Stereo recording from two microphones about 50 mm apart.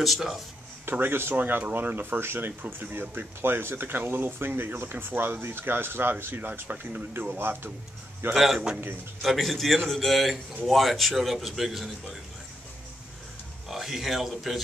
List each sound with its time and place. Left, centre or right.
0.0 s a man's voice: centre
0.9 s speech: right
8.3 s a man's voice: centre
13.7 s a man's voice: centre